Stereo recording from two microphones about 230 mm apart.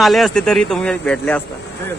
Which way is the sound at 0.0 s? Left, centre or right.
Centre.